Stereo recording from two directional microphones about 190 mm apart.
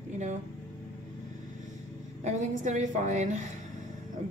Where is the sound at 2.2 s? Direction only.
40° right (ahead or behind).